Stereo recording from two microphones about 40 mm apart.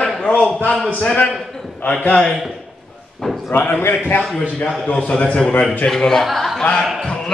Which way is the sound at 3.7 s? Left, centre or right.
Left.